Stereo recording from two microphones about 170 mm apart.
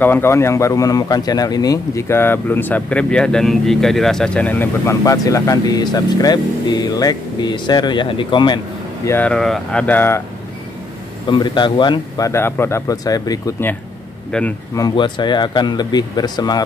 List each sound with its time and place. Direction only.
0.0 s speech: 15° left (ahead or behind)
9.0 s speech: 10° left (ahead or behind)
11.2 s speech: 25° left (ahead or behind)
14.8 s speech: 25° left (ahead or behind)